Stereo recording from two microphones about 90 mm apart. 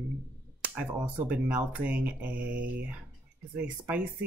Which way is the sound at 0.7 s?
15° right (ahead or behind).